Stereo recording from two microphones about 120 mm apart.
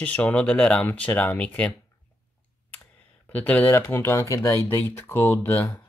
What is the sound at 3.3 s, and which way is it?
Speech, 15° left (ahead or behind).